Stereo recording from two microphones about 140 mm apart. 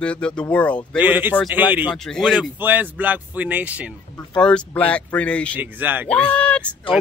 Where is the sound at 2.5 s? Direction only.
15° right (ahead or behind).